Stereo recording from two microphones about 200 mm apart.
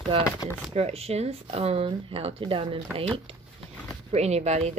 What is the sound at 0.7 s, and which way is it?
Speech, 30° right (ahead or behind).